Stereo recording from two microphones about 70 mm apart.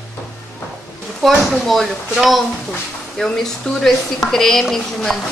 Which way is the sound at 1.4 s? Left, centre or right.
Centre.